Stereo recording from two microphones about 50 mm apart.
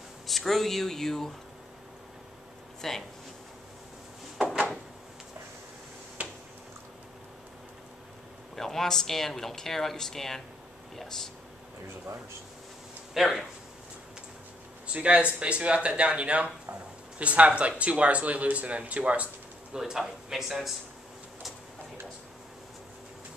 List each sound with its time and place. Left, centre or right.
0.3 s speech: centre
2.8 s speech: centre
6.2 s a sound: right
8.5 s speech: centre
13.1 s speech: centre
14.9 s speech: right
19.7 s speech: centre